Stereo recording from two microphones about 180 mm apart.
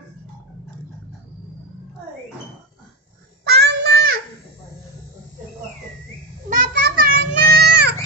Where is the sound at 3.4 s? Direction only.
65° right (ahead or behind).